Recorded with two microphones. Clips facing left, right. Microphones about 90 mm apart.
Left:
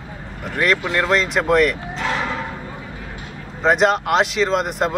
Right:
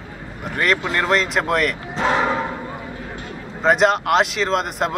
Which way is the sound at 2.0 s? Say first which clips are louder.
Right 8 dB; 35° right (ahead or behind).